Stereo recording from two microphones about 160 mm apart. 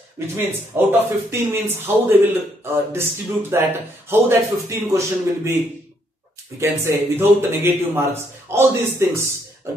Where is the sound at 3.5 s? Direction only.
15° right (ahead or behind).